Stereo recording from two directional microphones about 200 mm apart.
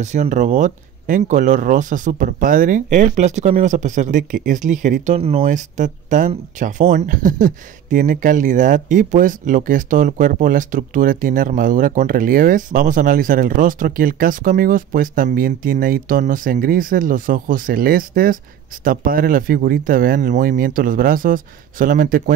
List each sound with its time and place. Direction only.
0.0 s speech: 35° right (ahead or behind)